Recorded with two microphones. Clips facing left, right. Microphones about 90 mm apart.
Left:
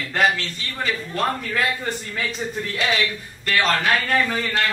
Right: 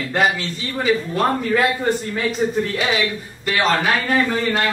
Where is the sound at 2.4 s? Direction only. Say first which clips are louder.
Right 8 dB; 25° right (ahead or behind).